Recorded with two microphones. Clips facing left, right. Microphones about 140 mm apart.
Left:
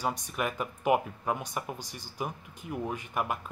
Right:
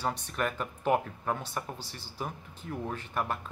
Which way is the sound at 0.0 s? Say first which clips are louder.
Even; 10° left (ahead or behind).